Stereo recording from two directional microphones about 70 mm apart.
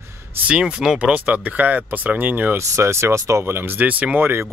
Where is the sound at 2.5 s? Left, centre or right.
Right.